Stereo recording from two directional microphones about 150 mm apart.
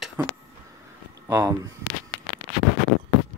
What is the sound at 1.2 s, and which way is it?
Speech, 20° right (ahead or behind).